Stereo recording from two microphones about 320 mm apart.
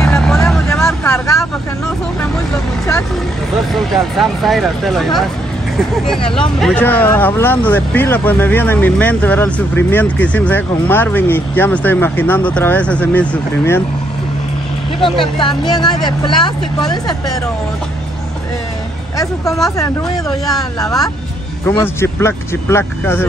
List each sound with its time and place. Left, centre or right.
0.0 s vehicle: centre
2.5 s vehicle: centre
3.7 s speech: centre
6.6 s speech: centre
15.0 s speech: centre
19.1 s speech: centre